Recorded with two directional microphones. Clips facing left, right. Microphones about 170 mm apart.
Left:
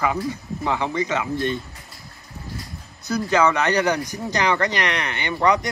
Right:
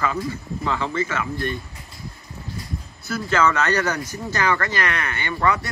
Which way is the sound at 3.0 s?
15° left (ahead or behind).